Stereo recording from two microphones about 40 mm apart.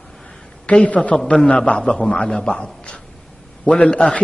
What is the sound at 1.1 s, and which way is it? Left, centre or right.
A man's voice, left.